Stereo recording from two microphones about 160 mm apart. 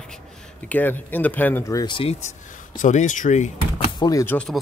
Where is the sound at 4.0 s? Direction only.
20° left (ahead or behind).